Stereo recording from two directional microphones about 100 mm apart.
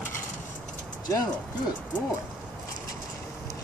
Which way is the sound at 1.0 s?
35° left (ahead or behind).